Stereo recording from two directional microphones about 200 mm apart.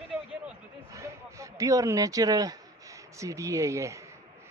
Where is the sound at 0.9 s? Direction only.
15° right (ahead or behind).